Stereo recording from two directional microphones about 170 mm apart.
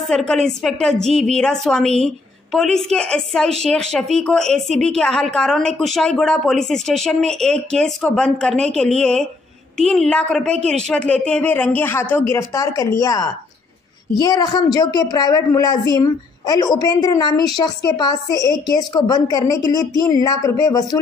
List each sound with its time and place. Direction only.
0.0 s a woman's voice: 5° left (ahead or behind); by 21.0 s 20° left (ahead or behind)